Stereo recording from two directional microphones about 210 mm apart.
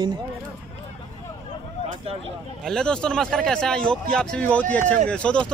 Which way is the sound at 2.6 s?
5° left (ahead or behind).